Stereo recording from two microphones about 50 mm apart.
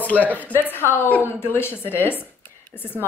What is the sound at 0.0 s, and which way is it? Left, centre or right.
Speech, left.